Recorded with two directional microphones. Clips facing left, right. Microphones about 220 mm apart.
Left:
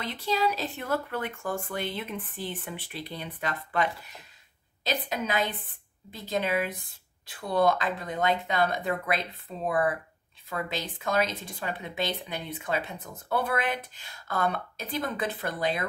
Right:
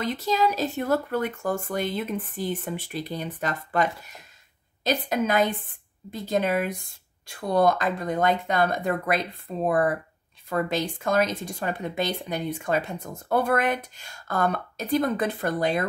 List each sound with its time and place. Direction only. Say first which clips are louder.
0.0 s speech: right 4 dB; 45° right (ahead or behind)